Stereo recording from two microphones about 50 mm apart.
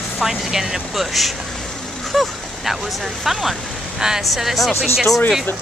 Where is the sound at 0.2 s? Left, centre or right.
Centre.